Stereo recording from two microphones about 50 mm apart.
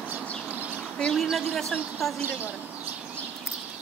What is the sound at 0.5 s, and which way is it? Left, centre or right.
Bird, right.